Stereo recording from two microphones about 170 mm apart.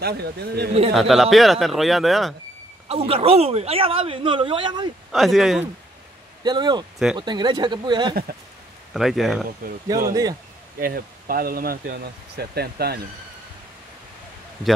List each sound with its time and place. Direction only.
0.0 s a man's voice: 70° right (ahead or behind)
0.9 s speech: centre (ahead or behind)
2.9 s speech: 35° right (ahead or behind)
5.1 s speech: centre (ahead or behind)
6.4 s speech: 25° right (ahead or behind)
8.9 s speech: centre (ahead or behind)
9.6 s speech: 60° right (ahead or behind)
10.0 s speech: 20° right (ahead or behind)
10.8 s speech: 60° right (ahead or behind)